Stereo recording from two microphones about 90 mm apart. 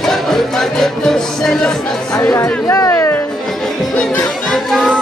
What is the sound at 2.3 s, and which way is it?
Speech, 35° left (ahead or behind).